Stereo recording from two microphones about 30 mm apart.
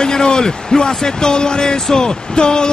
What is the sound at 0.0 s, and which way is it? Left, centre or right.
A man's voice, left.